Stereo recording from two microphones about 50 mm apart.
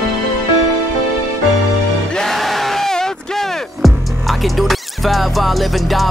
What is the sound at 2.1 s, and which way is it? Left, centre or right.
Music, centre.